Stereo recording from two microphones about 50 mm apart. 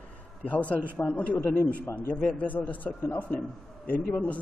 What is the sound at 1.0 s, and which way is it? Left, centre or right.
A man's voice, left.